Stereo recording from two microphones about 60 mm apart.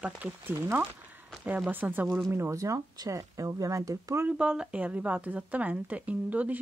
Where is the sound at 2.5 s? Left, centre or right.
Right.